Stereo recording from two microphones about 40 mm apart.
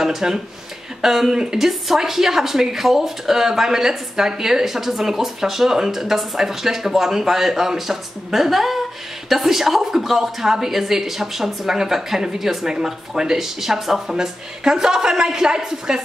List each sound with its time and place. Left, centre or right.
0.0 s a woman's voice: centre
1.3 s speech: centre
1.6 s a woman's voice: centre